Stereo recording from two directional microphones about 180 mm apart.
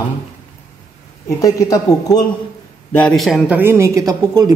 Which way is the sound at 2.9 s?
5° left (ahead or behind).